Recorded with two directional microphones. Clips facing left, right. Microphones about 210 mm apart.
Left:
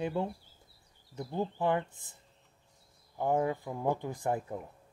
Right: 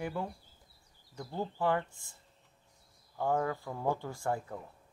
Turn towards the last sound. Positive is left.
turn(degrees=20)  # may be behind; listen again after turning